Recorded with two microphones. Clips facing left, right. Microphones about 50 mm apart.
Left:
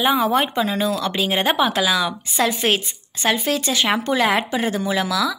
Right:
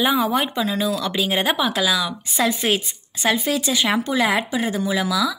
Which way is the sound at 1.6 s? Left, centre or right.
Centre.